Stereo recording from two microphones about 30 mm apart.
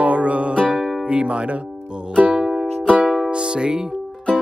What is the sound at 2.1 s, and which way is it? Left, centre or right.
Music, right.